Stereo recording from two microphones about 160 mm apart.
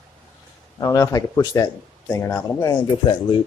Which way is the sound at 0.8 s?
20° left (ahead or behind).